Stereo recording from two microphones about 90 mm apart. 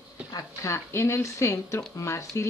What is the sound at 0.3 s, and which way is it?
A woman's voice, 40° left (ahead or behind).